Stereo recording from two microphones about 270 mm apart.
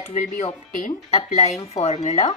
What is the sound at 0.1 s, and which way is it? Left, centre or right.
Speech, left.